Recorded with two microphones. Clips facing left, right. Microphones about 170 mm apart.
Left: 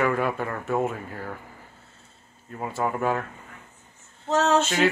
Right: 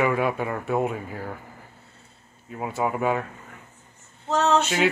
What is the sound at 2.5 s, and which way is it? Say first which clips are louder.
Speech: right 1 dB; 5° right (ahead or behind).